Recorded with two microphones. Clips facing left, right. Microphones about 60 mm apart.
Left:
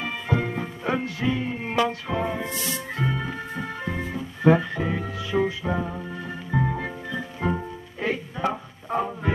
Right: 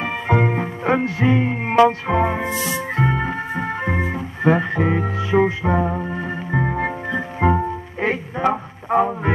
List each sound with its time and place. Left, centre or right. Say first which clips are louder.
0.0 s music: right 7 dB; right
2.4 s music: right 7 dB; centre
3.0 s organ: right 7 dB; right